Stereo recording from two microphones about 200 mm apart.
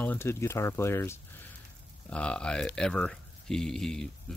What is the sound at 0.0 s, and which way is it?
Speech, 10° left (ahead or behind).